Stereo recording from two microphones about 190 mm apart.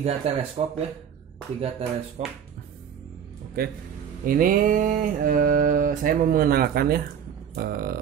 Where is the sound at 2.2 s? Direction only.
35° right (ahead or behind).